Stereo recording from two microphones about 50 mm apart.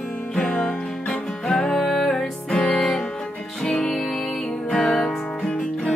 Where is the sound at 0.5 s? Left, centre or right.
Centre.